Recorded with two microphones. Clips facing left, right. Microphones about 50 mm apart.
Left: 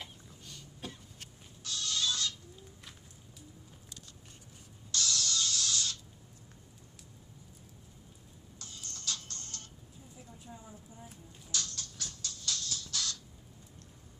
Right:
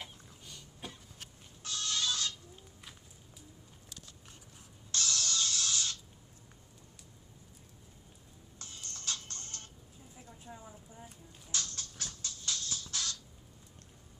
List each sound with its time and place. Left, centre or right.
0.0 s chicken: centre
1.6 s music: right
4.9 s mechanisms: right
8.5 s music: right
10.5 s a sound: centre
11.5 s music: right